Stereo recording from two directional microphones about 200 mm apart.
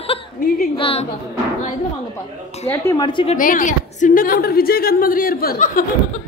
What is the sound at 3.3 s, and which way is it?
A woman's voice, 40° left (ahead or behind).